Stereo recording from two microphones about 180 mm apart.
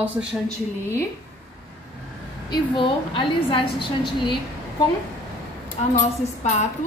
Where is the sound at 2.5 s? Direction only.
25° left (ahead or behind).